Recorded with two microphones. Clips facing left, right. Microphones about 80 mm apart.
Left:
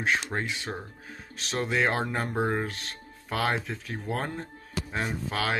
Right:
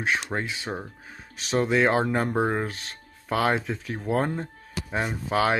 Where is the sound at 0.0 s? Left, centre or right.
Centre.